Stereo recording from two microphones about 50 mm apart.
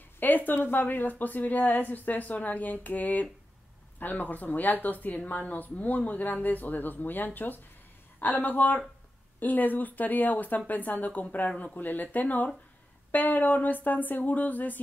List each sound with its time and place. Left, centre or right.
0.5 s speech: left